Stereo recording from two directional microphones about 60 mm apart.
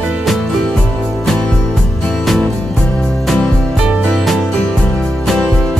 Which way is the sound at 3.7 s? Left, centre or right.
Centre.